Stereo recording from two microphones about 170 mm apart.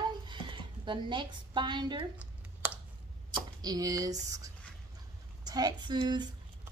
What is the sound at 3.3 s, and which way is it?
A woman's voice, 20° right (ahead or behind).